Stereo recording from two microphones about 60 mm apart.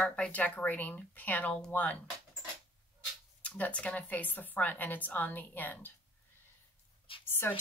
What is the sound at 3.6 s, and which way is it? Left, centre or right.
Speech, centre.